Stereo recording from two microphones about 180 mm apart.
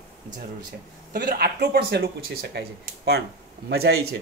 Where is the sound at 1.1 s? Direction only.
55° right (ahead or behind).